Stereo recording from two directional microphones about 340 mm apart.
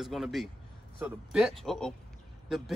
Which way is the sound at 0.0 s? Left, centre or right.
Centre.